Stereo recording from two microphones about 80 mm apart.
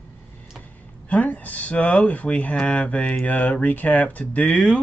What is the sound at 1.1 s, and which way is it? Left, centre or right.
Speech, centre.